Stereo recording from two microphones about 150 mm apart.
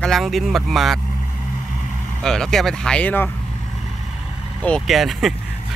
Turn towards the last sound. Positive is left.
turn(degrees=0)  # may be behind; listen again after turning